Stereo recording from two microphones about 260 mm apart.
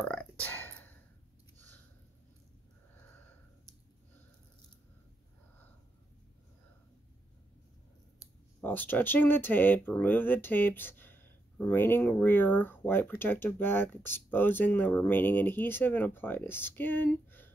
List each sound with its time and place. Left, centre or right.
0.0 s burping: centre
8.2 s speech: centre